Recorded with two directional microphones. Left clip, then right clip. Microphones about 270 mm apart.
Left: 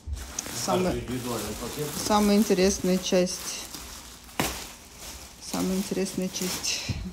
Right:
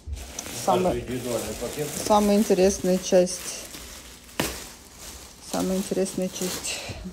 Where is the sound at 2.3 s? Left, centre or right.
Centre.